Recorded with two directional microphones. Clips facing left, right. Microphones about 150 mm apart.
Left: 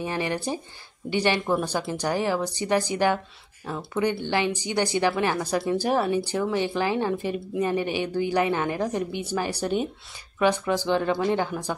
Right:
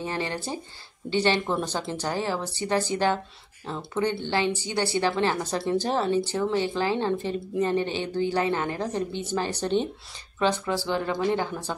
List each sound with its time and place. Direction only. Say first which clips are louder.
0.0 s a woman's voice: left 3 dB; 15° left (ahead or behind)